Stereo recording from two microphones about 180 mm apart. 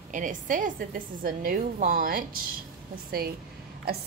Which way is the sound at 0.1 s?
45° right (ahead or behind).